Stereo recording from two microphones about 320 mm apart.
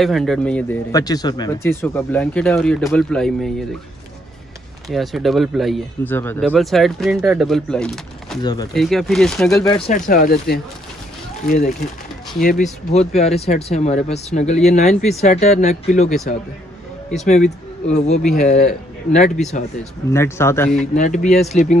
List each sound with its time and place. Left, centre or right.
0.0 s speech: centre
4.8 s speech: centre
8.4 s speech: centre
8.7 s speech: centre
9.8 s speech: left
17.8 s speech: left
20.1 s speech: centre
20.8 s speech: left